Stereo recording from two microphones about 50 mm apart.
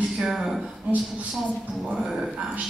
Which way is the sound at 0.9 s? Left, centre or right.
Right.